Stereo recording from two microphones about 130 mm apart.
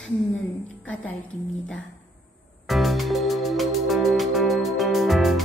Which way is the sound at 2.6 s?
Centre (ahead or behind).